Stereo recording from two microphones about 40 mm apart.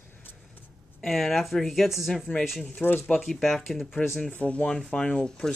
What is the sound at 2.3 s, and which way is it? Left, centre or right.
Speech, left.